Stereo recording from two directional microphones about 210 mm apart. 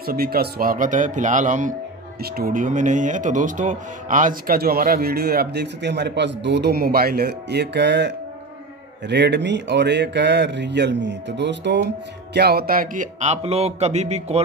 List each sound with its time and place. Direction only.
0.0 s a man's voice: 45° right (ahead or behind)